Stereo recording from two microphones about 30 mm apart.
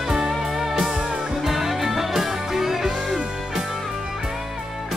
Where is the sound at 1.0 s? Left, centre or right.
Right.